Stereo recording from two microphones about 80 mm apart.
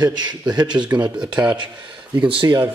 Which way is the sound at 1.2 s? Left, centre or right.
Centre.